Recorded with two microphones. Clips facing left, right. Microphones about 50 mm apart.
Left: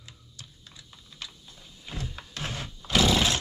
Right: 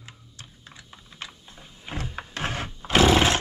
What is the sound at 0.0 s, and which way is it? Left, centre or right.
Typing, right.